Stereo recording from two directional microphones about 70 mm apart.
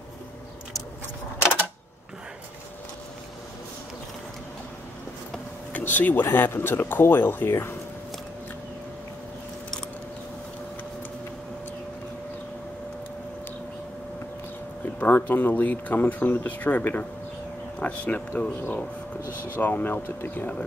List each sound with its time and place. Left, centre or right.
5.7 s speech: left
15.0 s speech: left
19.5 s speech: left